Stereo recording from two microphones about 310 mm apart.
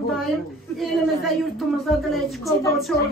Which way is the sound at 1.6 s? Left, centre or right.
Centre.